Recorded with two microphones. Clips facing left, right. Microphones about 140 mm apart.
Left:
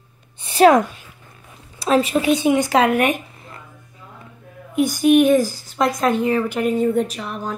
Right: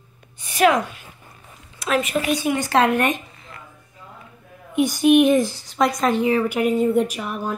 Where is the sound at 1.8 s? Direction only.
30° left (ahead or behind).